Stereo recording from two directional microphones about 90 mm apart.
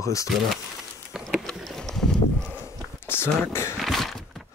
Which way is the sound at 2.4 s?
25° left (ahead or behind).